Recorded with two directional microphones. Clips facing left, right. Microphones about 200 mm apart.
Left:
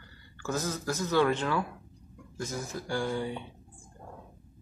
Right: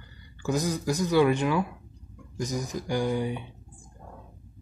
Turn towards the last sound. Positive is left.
turn(degrees=-15)  # may be behind; listen again after turning